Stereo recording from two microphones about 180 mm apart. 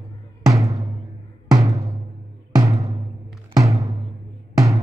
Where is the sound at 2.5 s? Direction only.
15° right (ahead or behind).